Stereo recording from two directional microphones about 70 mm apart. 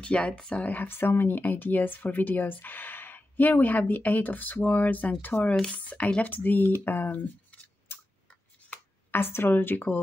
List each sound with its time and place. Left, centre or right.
0.0 s speech: centre
0.7 s speech: left
7.9 s chewing: left
9.1 s speech: left